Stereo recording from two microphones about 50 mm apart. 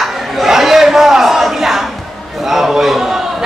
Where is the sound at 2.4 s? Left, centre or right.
Centre.